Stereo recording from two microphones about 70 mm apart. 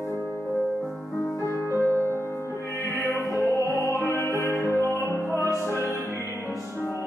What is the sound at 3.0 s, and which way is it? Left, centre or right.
Music, left.